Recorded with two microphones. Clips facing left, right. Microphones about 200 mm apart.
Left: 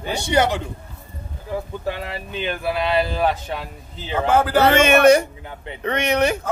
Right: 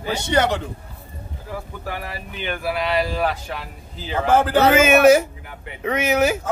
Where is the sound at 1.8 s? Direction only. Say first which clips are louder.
Left 3 dB; 25° left (ahead or behind).